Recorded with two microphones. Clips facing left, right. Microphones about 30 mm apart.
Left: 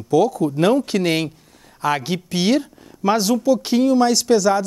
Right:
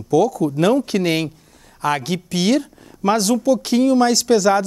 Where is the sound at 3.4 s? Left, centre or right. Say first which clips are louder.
Even; centre.